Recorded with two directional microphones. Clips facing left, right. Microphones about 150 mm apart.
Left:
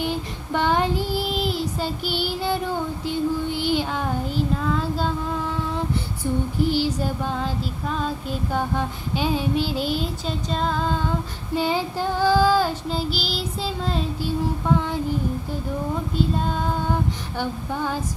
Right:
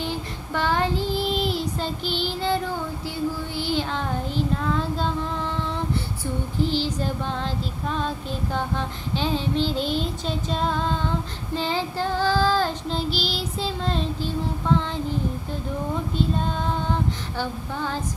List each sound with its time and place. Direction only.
0.0 s child singing: 15° left (ahead or behind)
6.6 s child singing: 10° left (ahead or behind)
11.5 s child singing: 15° left (ahead or behind)
16.2 s child singing: 5° left (ahead or behind)